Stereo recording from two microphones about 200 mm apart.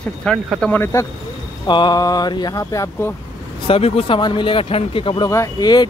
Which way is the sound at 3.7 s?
30° left (ahead or behind).